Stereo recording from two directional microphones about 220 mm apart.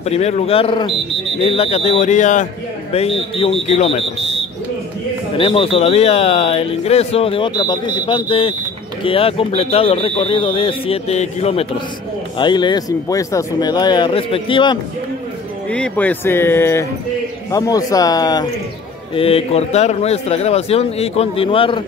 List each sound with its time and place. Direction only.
0.0 s speech: 30° left (ahead or behind)
5.4 s speech: 25° left (ahead or behind)
15.7 s speech: 5° left (ahead or behind); by 21.8 s 25° left (ahead or behind)